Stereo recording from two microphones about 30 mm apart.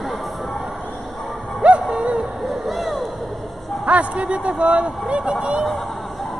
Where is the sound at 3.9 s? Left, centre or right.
Right.